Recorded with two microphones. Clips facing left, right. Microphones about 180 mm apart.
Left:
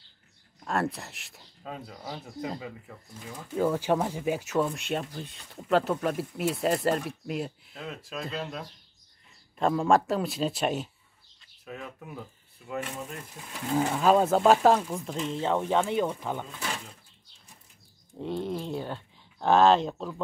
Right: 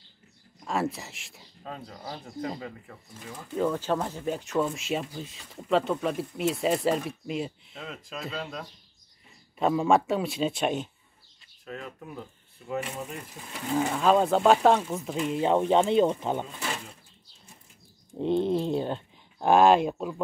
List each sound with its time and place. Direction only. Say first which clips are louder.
0.7 s speech: even; centre (ahead or behind)
9.6 s speech: right 1 dB; 5° right (ahead or behind); by 16.4 s 20° right (ahead or behind)
18.1 s speech: right 7 dB; 25° right (ahead or behind)